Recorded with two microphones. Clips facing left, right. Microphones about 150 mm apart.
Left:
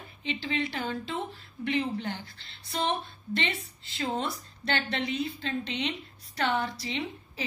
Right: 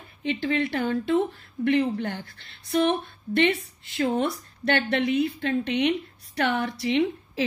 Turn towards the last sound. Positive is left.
turn(degrees=-65)  # may be behind; listen again after turning